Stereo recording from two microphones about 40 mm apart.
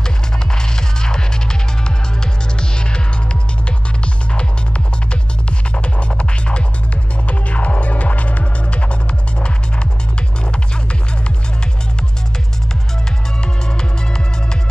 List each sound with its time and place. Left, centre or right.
0.6 s music: centre
3.6 s music: left
10.5 s music: left
13.7 s music: centre